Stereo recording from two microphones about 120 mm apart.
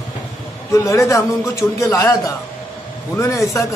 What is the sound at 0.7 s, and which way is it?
A man's voice, 25° left (ahead or behind).